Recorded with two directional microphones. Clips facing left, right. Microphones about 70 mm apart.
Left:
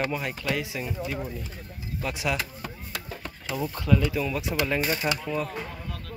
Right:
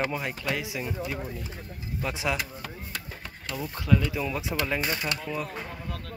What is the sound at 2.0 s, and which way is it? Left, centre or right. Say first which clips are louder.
Speech: left 1 dB; right.